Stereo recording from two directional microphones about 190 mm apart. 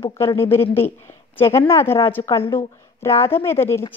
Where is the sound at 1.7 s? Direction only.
15° left (ahead or behind).